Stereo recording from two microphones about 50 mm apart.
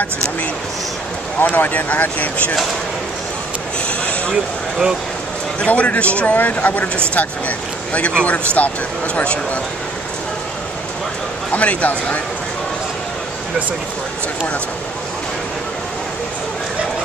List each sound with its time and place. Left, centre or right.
1.4 s speech: left
5.7 s speech: left
11.5 s speech: left